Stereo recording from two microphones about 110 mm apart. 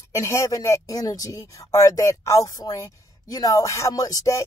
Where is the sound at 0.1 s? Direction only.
30° left (ahead or behind).